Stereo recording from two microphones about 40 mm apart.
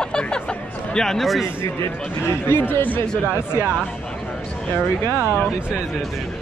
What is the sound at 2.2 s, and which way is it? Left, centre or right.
Speech, left.